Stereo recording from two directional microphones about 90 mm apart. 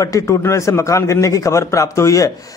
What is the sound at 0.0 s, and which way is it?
A man's voice, 35° left (ahead or behind).